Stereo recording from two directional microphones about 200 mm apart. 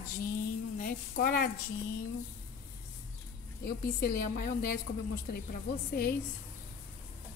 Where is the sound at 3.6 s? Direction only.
50° left (ahead or behind).